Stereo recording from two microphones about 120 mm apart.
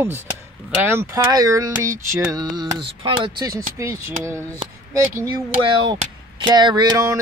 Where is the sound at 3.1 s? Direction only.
45° right (ahead or behind).